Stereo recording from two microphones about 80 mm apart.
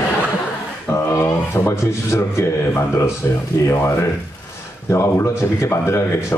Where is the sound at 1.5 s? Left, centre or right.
Left.